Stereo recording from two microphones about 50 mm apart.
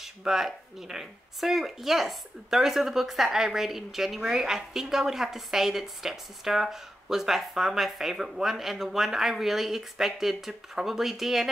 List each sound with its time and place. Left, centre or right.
0.0 s speech: centre